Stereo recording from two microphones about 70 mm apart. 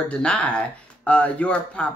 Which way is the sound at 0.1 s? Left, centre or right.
Centre.